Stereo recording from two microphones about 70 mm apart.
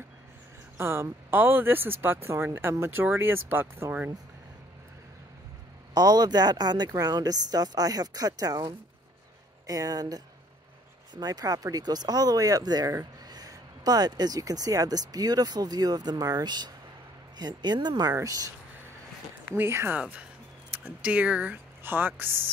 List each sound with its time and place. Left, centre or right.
0.7 s speech: right
5.9 s speech: right
9.7 s speech: right
18.1 s speech: right
19.5 s speech: right
19.9 s speech: centre
21.8 s speech: right